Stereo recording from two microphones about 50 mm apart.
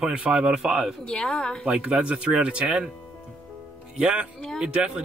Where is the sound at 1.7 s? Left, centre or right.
Centre.